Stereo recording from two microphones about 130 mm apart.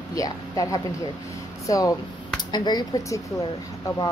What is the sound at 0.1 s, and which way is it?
Speech, 25° left (ahead or behind).